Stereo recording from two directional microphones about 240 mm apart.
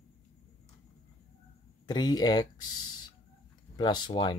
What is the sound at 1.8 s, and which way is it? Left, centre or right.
Speech, centre.